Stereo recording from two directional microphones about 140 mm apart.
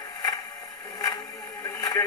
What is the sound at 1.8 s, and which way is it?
Radio, 25° left (ahead or behind).